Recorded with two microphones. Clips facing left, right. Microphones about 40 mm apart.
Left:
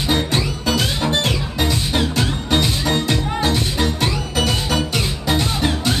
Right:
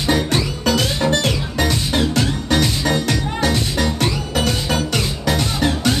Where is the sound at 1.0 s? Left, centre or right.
Left.